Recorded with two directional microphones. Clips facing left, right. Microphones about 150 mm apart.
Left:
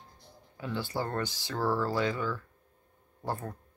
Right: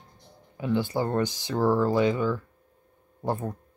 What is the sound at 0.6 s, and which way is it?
Speech, 20° right (ahead or behind).